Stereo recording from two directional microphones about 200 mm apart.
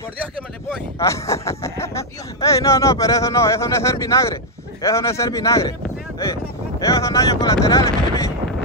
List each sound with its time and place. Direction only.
0.9 s speech: 15° left (ahead or behind)
6.8 s speech: 15° left (ahead or behind)